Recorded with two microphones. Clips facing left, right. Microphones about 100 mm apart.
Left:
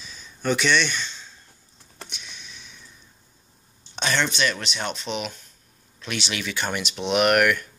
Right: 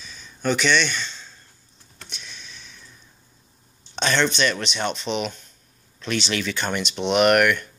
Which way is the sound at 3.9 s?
10° left (ahead or behind).